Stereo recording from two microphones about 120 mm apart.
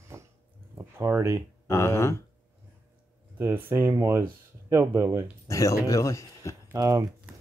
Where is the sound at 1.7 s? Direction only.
20° left (ahead or behind).